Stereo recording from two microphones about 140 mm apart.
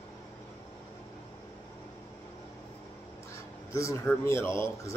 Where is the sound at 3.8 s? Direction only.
20° left (ahead or behind).